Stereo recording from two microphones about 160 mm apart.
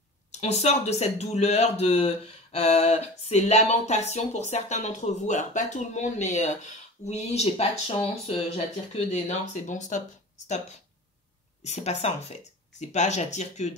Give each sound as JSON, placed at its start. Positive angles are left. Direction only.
{"t": 0.3, "sound": "a man's voice", "side_deg": 40}
{"t": 11.6, "sound": "a man's voice", "side_deg": 45}